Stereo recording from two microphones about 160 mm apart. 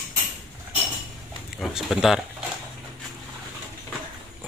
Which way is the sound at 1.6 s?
Centre (ahead or behind).